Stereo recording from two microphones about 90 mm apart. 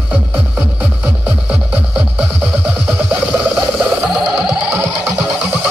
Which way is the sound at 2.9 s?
20° right (ahead or behind).